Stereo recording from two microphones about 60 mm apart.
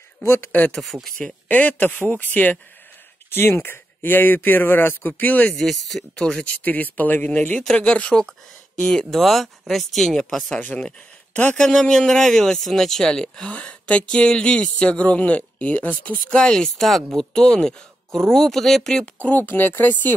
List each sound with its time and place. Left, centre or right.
0.2 s speech: left
0.9 s speech: centre
1.5 s speech: left
3.3 s speech: left
5.6 s speech: centre
6.5 s speech: left
9.2 s speech: centre
10.8 s speech: left
11.6 s speech: centre; by 16.2 s left
16.3 s speech: centre
19.2 s speech: left